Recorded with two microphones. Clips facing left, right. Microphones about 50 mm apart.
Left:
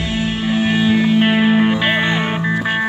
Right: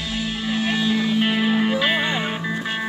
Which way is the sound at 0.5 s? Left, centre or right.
Left.